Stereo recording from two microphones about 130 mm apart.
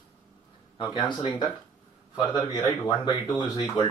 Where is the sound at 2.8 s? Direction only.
35° left (ahead or behind).